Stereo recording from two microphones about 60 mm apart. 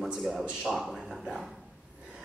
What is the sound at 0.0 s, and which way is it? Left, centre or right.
A man's voice, centre.